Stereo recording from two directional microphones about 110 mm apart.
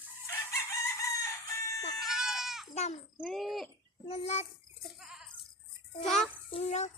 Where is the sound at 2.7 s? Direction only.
90° left.